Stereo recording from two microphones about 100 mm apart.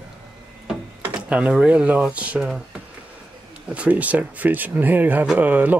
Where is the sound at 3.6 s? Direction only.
15° right (ahead or behind).